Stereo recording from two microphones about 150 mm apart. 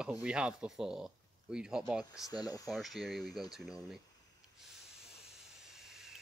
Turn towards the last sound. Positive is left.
turn(degrees=-5)  # may be behind; listen again after turning